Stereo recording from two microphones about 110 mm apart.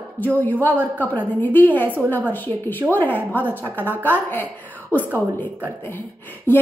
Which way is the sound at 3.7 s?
15° right (ahead or behind).